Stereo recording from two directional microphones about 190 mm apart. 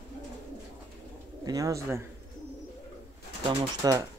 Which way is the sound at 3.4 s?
20° right (ahead or behind).